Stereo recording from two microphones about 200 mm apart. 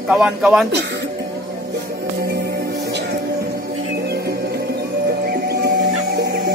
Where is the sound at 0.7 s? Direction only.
55° right (ahead or behind).